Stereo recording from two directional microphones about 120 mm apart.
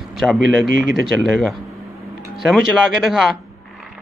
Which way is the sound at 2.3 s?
Centre (ahead or behind).